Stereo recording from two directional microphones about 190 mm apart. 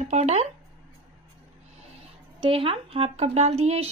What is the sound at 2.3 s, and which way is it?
Speech, 30° right (ahead or behind).